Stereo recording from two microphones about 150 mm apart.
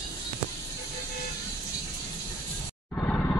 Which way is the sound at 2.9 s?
10° left (ahead or behind).